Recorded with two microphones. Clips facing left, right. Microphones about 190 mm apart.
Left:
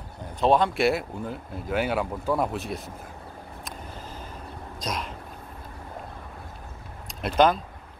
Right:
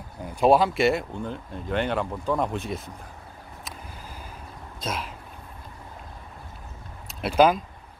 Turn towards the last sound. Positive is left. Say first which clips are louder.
# right 1 dB
turn(degrees=-5)  # may be behind; listen again after turning